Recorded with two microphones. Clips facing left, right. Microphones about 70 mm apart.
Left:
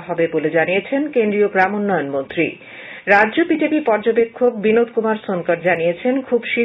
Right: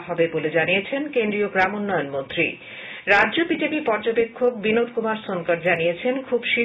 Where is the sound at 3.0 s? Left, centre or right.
Left.